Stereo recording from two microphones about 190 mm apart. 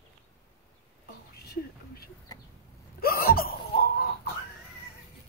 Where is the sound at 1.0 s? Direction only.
55° left (ahead or behind).